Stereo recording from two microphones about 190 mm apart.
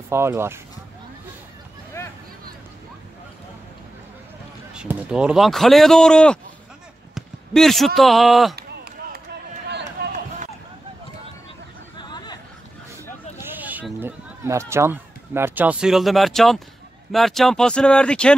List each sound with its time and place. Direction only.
0.1 s speech: 15° right (ahead or behind)
2.0 s a sound: 15° left (ahead or behind)
4.7 s speech: 5° right (ahead or behind)
8.5 s chop: 55° right (ahead or behind)
9.7 s run: 65° right (ahead or behind)
12.0 s chatter: 25° left (ahead or behind)
13.4 s speech: 10° right (ahead or behind)